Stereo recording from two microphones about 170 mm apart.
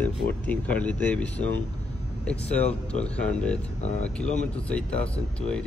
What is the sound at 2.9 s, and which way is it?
Speech, 5° left (ahead or behind).